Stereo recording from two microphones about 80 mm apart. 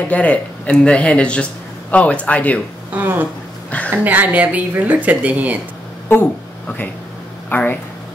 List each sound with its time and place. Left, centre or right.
0.1 s a man's voice: centre
2.9 s speech: right
6.1 s speech: left
7.4 s speech: left